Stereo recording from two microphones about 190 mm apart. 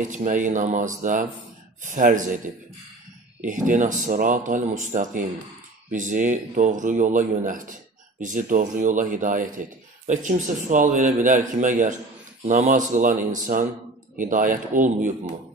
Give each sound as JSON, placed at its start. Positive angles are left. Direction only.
{"t": 0.1, "sound": "a man's voice", "side_deg": -40}